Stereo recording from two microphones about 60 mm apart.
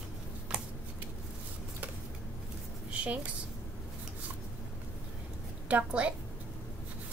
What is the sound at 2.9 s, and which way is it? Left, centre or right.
Speech, right.